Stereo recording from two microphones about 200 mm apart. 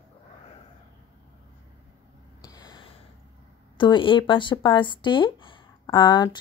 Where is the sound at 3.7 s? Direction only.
25° left (ahead or behind).